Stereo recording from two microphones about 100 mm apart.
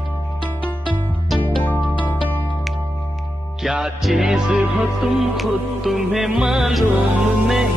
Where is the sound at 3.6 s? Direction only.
5° right (ahead or behind).